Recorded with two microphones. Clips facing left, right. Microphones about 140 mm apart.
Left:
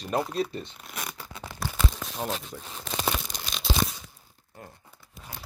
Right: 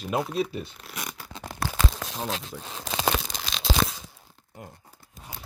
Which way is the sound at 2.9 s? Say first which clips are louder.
Right 3 dB; 90° right.